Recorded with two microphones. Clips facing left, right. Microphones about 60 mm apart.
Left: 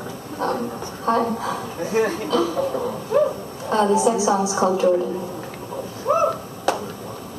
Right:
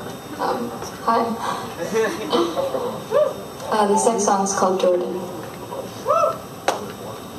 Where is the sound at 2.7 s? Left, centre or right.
Left.